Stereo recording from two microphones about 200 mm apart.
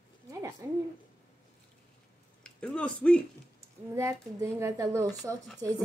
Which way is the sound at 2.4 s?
5° left (ahead or behind).